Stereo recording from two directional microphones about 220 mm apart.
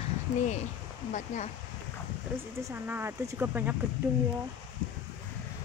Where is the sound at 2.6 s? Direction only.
10° right (ahead or behind).